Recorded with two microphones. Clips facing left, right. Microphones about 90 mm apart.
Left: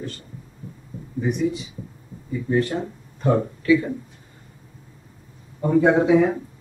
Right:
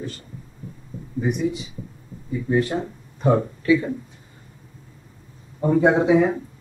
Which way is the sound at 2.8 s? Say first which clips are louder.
Right 2 dB; 20° right (ahead or behind).